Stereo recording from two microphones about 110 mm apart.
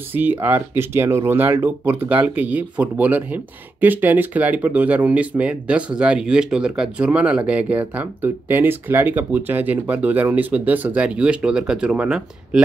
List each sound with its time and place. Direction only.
0.1 s speech: 15° right (ahead or behind)